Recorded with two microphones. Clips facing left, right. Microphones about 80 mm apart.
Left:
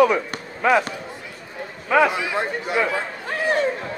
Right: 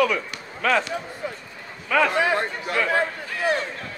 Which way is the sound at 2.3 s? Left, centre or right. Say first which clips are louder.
Left 2 dB; centre.